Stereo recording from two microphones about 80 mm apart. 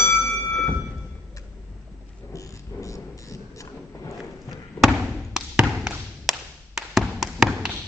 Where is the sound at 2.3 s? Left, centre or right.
Left.